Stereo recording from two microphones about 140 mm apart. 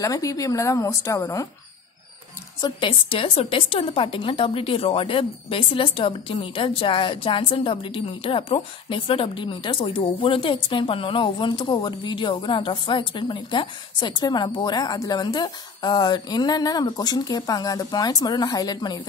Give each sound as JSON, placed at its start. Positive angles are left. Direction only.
{"t": 0.0, "sound": "a woman's voice", "side_deg": 25}
{"t": 2.6, "sound": "a woman's voice", "side_deg": 35}